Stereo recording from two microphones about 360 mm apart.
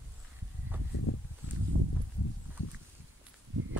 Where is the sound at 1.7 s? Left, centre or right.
Right.